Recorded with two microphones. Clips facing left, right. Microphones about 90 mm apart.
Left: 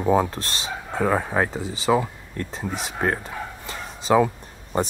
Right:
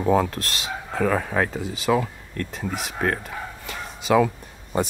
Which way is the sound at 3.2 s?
30° left (ahead or behind).